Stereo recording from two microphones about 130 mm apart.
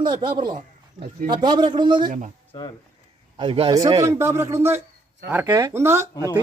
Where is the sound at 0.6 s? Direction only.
70° right (ahead or behind).